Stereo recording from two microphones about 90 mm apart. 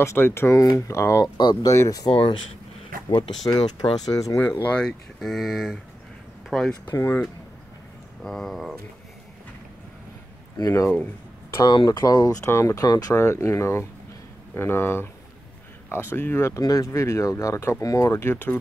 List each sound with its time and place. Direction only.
0.0 s speech: 30° left (ahead or behind)
1.2 s speech: 50° left (ahead or behind)
1.7 s speech: 40° left (ahead or behind)
2.0 s speech: 70° left (ahead or behind)
3.2 s speech: 50° left (ahead or behind)
4.5 s speech: 25° left (ahead or behind)
4.7 s speech: 5° left (ahead or behind)
6.9 s speech: 25° left (ahead or behind)
8.2 s speech: 5° left (ahead or behind)
10.6 s speech: 35° left (ahead or behind)
11.6 s speech: 50° left (ahead or behind)
12.4 s speech: 30° left (ahead or behind)